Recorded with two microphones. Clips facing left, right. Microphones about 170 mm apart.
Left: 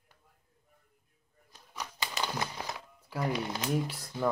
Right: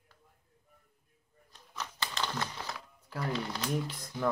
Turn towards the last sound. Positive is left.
turn(degrees=15)  # may be behind; listen again after turning